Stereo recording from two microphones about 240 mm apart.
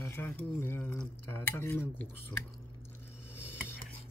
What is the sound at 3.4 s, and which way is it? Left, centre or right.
Dishes, centre.